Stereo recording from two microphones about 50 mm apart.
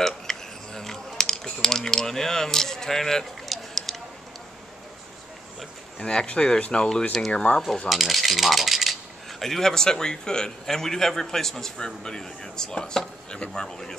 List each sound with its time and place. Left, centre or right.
0.0 s typing: centre
5.9 s a man's voice: left
7.5 s mechanisms: left
7.9 s speech: centre
9.4 s a man's voice: centre